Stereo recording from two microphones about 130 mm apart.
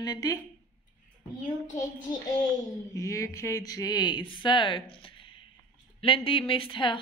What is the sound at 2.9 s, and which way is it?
A woman's voice, 25° left (ahead or behind).